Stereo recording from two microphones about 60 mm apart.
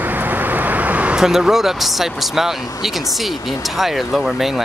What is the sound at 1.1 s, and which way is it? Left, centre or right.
Speech, centre.